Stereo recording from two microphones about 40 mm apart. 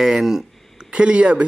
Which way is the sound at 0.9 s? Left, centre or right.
Right.